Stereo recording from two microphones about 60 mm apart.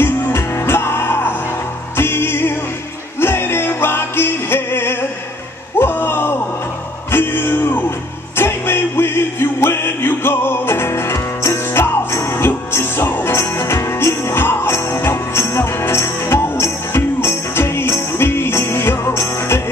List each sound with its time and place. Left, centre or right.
0.0 s music: left
5.8 s a sound: left
7.1 s music: left